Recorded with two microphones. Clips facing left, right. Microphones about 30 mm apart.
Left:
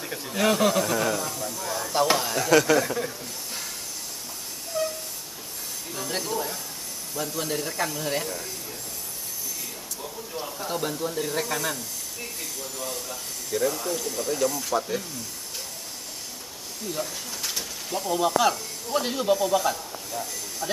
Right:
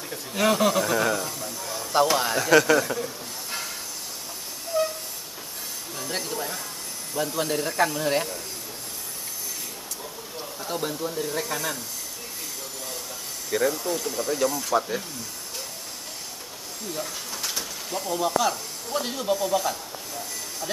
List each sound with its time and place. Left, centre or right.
0.3 s speech: centre
4.7 s train: centre
5.9 s a sound: centre
7.2 s speech: centre
10.6 s speech: centre
13.5 s speech: right
13.8 s speech: centre
17.0 s speech: centre